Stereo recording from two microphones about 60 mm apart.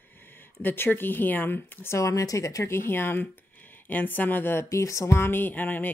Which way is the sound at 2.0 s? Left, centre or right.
Left.